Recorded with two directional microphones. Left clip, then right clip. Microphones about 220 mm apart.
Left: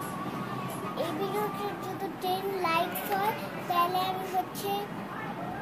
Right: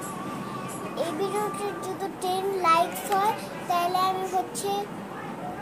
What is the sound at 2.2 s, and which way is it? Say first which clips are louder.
A child's voice: right 6 dB; 10° left (ahead or behind).